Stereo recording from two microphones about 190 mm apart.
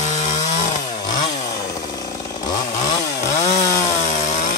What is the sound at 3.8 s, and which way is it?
Chainsaw, 40° left (ahead or behind).